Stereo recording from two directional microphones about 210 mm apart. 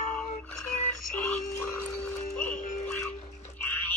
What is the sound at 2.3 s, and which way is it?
Music, 5° left (ahead or behind).